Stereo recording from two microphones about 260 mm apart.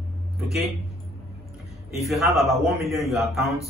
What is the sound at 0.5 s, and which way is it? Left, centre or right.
Speech, centre.